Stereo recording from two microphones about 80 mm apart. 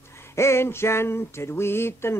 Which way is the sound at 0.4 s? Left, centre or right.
Left.